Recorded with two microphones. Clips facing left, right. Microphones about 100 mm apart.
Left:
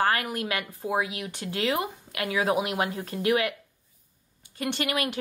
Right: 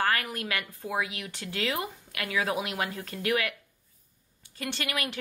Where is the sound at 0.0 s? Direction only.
25° left (ahead or behind).